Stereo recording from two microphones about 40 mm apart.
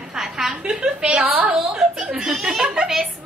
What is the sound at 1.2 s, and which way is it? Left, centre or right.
Speech, right.